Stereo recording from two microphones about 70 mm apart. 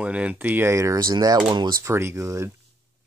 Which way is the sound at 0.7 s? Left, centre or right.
Right.